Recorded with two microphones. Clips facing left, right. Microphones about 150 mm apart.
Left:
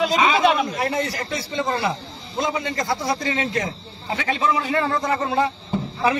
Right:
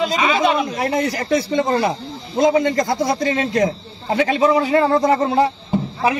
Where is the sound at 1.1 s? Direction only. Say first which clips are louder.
Right 8 dB; 45° right (ahead or behind).